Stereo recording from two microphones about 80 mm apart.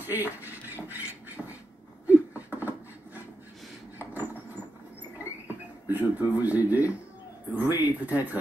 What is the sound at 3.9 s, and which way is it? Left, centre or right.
Vehicle, right.